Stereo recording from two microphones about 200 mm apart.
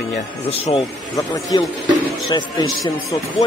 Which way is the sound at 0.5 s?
30° left (ahead or behind).